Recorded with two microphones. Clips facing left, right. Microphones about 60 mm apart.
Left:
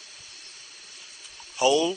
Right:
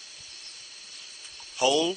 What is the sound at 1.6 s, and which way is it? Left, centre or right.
Speech, centre.